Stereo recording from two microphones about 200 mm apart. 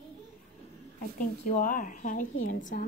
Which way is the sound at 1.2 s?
40° left (ahead or behind).